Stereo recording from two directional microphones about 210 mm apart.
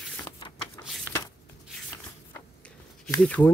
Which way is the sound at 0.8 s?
15° left (ahead or behind).